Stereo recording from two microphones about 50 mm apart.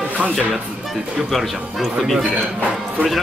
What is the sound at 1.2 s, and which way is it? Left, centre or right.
Speech, centre.